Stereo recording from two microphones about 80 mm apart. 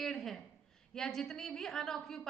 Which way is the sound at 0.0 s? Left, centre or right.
Centre.